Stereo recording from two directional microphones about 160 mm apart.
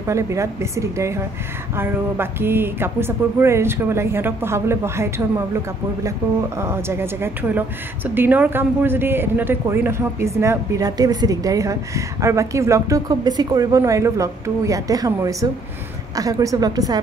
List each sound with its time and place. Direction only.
0.0 s speech: 20° right (ahead or behind)
6.6 s a woman's voice: 15° right (ahead or behind)